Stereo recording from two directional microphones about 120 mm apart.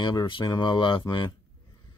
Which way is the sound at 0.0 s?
35° left (ahead or behind).